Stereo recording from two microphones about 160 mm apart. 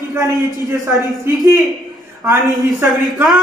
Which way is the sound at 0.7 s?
20° right (ahead or behind).